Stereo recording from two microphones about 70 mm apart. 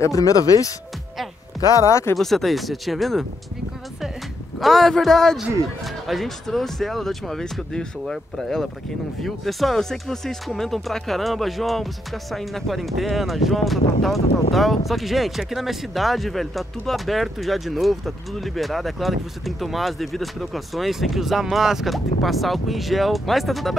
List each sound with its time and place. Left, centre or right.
0.0 s speech: left
1.8 s speech: left
2.1 s speech: centre
4.6 s speech: centre